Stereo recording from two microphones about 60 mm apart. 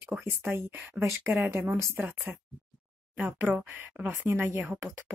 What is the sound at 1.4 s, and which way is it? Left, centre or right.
Speech, right.